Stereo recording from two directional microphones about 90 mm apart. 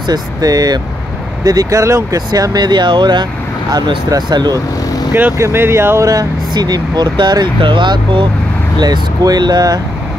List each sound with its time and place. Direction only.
0.1 s speech: 45° right (ahead or behind)
5.4 s speech: 30° right (ahead or behind); by 8.3 s 60° right (ahead or behind)
8.7 s speech: 50° right (ahead or behind)